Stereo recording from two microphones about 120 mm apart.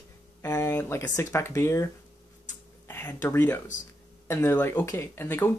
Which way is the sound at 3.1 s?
20° left (ahead or behind).